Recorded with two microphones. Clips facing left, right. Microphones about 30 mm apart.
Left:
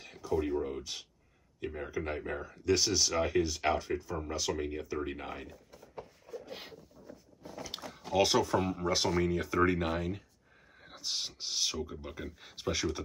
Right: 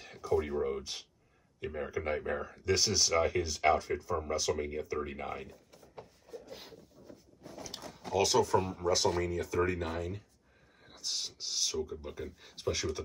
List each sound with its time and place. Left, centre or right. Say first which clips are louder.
0.4 s speech: even; centre
7.6 s speech: left 1 dB; left
8.9 s speech: right 1 dB; centre
9.2 s speech: left 3 dB; left; by 11.7 s centre
11.7 s speech: right 2 dB; left
12.1 s speech: right 1 dB; centre